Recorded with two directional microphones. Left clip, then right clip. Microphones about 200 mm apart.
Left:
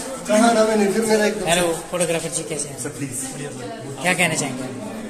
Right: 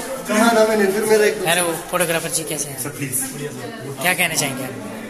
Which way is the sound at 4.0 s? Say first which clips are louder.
Right 1 dB; centre (ahead or behind).